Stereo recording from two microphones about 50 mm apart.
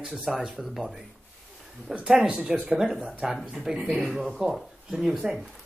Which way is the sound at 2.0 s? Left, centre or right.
Centre.